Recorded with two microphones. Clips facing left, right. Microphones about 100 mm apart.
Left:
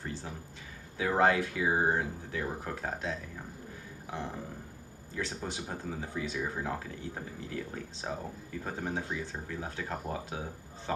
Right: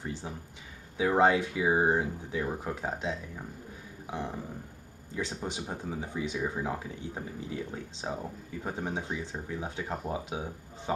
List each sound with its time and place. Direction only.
0.0 s speech: 15° right (ahead or behind)